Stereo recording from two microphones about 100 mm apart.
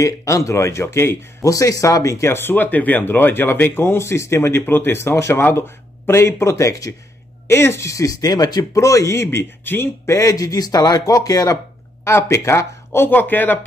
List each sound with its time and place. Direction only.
0.0 s speech: 35° left (ahead or behind)
12.0 s speech: 30° left (ahead or behind)